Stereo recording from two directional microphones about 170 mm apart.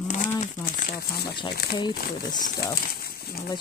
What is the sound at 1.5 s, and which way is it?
Speech, 65° left (ahead or behind).